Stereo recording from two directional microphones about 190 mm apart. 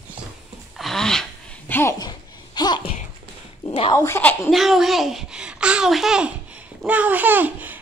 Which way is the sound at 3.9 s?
15° left (ahead or behind).